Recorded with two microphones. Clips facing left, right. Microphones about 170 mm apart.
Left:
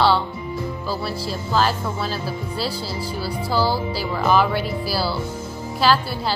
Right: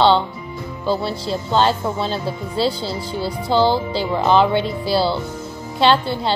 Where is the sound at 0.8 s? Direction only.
25° right (ahead or behind).